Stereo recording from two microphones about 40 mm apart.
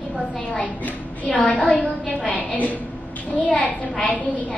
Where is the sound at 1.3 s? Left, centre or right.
Left.